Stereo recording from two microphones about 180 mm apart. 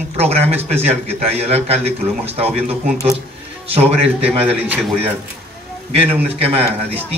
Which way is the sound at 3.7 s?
35° right (ahead or behind).